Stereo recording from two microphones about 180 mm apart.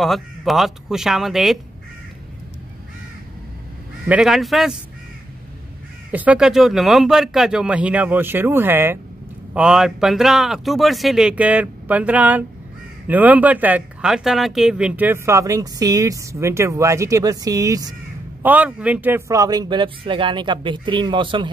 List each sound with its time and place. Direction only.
0.0 s speech: centre (ahead or behind)
4.1 s speech: centre (ahead or behind)
6.1 s speech: 5° right (ahead or behind)
18.4 s a man's voice: 10° right (ahead or behind); by 21.5 s 25° right (ahead or behind)